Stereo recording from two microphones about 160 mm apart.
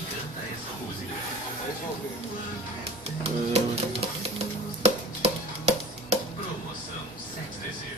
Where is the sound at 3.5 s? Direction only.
40° right (ahead or behind).